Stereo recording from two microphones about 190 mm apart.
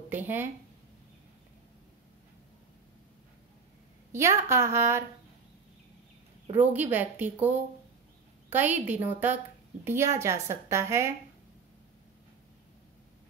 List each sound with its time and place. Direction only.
0.1 s speech: 10° right (ahead or behind)
4.1 s a woman's voice: 15° right (ahead or behind)
6.6 s a woman's voice: 10° right (ahead or behind)